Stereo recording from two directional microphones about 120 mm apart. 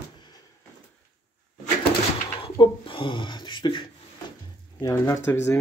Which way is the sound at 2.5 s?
40° left (ahead or behind).